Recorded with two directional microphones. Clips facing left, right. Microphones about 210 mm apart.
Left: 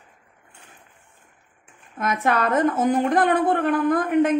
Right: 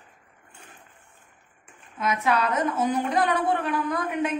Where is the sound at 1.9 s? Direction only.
50° left (ahead or behind).